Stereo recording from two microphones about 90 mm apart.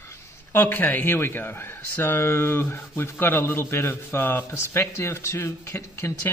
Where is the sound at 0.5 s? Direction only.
25° left (ahead or behind).